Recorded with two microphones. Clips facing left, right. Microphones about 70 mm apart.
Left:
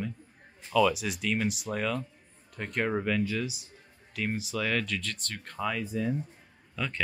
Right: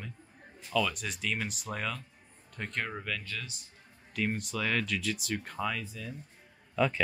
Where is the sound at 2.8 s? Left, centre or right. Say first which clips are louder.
Left 9 dB; centre.